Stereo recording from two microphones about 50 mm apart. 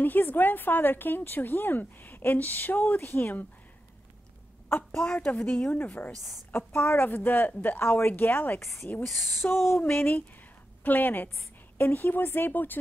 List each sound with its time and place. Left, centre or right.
0.0 s speech: left
4.6 s a woman's voice: left
5.0 s a woman's voice: left
6.5 s speech: left
7.8 s speech: left
8.1 s speech: left
8.5 s speech: left
9.0 s speech: centre
9.3 s speech: left
10.8 s speech: left